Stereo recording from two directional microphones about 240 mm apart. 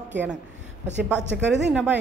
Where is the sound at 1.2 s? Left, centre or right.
Right.